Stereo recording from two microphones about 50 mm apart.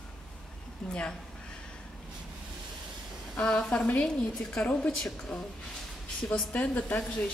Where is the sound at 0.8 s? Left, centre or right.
Centre.